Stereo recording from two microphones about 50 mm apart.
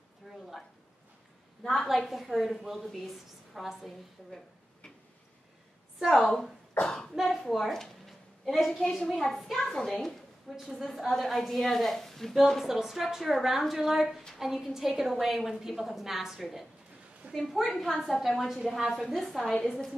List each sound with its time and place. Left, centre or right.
0.2 s a sound: centre
1.6 s a child's voice: centre
1.9 s a woman's voice: centre
6.2 s a child's voice: centre
6.7 s cough: left
7.2 s a woman's voice: centre
9.0 s a woman's voice: centre
12.6 s a woman's voice: centre
17.2 s a sound: right
17.6 s a woman's voice: centre